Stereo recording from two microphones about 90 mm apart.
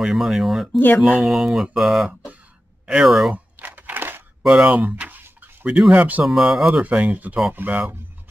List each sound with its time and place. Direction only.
0.0 s mantra: centre (ahead or behind)
0.7 s speech: 20° left (ahead or behind)
1.2 s mantra: centre (ahead or behind)
3.5 s crumpling: 20° right (ahead or behind)
4.4 s a sound: 5° right (ahead or behind)
5.8 s speech: 10° right (ahead or behind)
6.2 s mantra: centre (ahead or behind)
6.8 s speech: 15° right (ahead or behind)